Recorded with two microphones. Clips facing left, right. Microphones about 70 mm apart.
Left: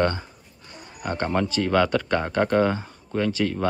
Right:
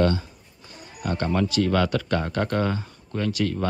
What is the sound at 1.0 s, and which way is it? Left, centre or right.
Speech, left.